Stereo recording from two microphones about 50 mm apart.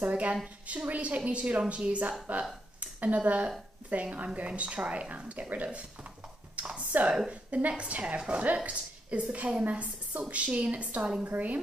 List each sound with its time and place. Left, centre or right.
0.0 s speech: right
3.2 s a woman's voice: right
6.5 s a sound: right
6.9 s a woman's voice: right